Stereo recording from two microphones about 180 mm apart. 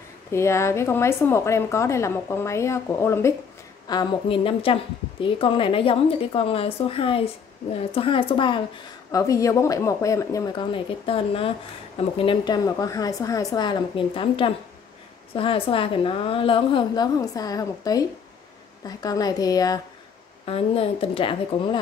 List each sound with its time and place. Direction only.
0.3 s a woman's voice: 15° left (ahead or behind)
20.4 s a woman's voice: 35° left (ahead or behind)